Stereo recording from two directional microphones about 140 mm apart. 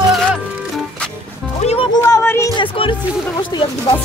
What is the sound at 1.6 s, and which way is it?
Music, 50° left (ahead or behind).